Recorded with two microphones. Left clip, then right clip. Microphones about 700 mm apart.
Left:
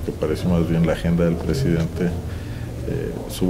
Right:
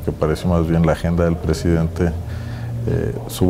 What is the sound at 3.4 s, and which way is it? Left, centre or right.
Speech, right.